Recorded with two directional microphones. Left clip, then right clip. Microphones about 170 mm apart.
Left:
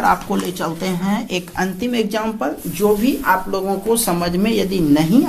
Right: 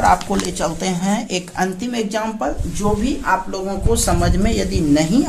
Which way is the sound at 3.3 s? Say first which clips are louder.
Left 1 dB; 25° left (ahead or behind).